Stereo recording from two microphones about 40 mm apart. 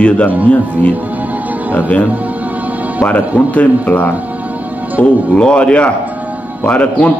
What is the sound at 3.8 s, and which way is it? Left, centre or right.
Speech, left.